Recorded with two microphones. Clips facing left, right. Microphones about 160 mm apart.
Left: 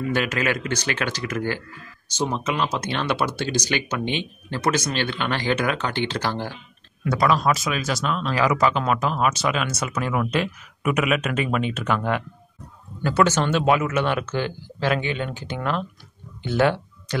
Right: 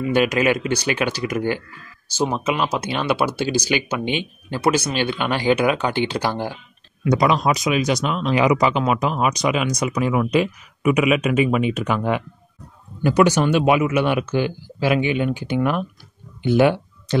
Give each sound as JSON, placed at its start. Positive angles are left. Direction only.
{"t": 0.0, "sound": "speech", "side_deg": -15}
{"t": 8.7, "sound": "speech", "side_deg": -5}
{"t": 9.0, "sound": "speech", "side_deg": -15}